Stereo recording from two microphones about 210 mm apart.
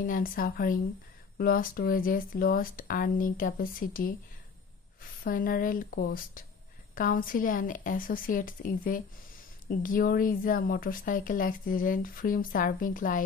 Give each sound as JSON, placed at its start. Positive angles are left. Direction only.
{"t": 0.0, "sound": "speech", "side_deg": 40}